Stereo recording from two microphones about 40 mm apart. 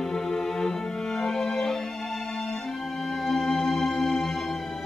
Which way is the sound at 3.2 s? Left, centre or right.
Centre.